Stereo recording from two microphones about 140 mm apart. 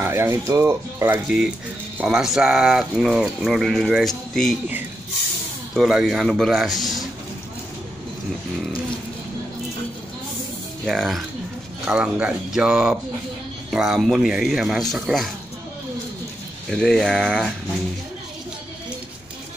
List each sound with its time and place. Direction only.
0.0 s speech: 20° right (ahead or behind)
1.2 s speech: 5° right (ahead or behind)
5.8 s speech: 5° right (ahead or behind)
10.9 s speech: centre (ahead or behind)
16.7 s speech: 5° left (ahead or behind)